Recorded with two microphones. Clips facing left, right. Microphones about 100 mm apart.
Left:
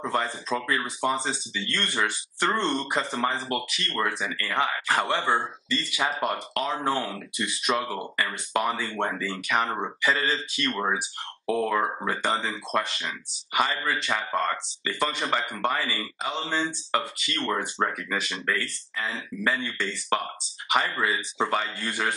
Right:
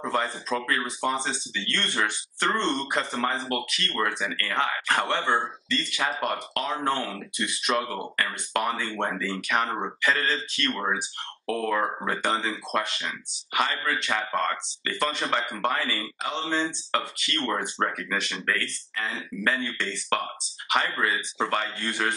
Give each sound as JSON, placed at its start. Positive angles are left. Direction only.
{"t": 0.1, "sound": "speech", "side_deg": 0}